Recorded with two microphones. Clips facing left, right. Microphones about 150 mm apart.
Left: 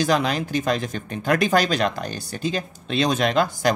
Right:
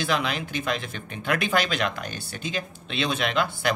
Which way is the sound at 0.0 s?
40° left (ahead or behind).